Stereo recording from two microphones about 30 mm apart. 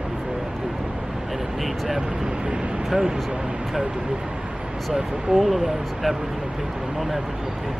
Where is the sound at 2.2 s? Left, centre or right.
Right.